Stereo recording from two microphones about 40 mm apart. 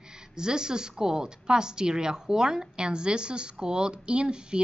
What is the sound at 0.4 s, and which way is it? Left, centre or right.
A woman's voice, centre.